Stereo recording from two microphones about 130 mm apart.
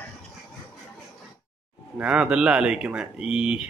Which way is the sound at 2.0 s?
10° right (ahead or behind).